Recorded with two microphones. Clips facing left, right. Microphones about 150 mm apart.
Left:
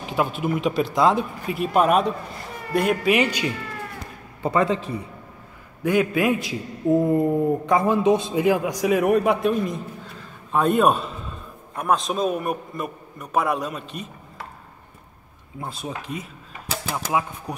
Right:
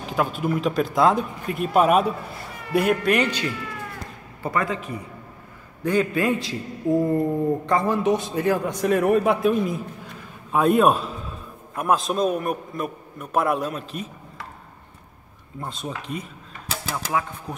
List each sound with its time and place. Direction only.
0.0 s a sound: 5° left (ahead or behind)
0.9 s a man's voice: centre (ahead or behind)
4.4 s a man's voice: 25° left (ahead or behind)
5.9 s a man's voice: 10° left (ahead or behind)
7.2 s a man's voice: 15° left (ahead or behind)
8.6 s a man's voice: 5° left (ahead or behind)
15.6 s a man's voice: 5° left (ahead or behind)
16.9 s a man's voice: 15° left (ahead or behind)